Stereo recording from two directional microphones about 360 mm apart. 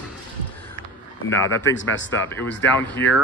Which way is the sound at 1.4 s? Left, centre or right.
Left.